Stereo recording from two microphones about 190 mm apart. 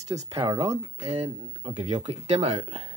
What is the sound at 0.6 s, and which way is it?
Speech, 35° right (ahead or behind).